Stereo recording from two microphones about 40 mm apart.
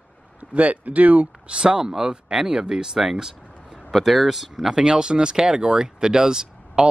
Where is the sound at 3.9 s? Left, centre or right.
Centre.